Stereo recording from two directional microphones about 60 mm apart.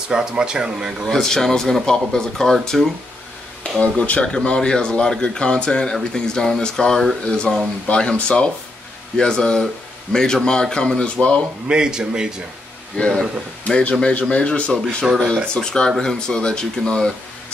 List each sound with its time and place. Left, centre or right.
0.1 s speech: centre
1.0 s speech: centre
3.8 s speech: left
4.3 s speech: centre
11.6 s speech: centre
12.9 s speech: centre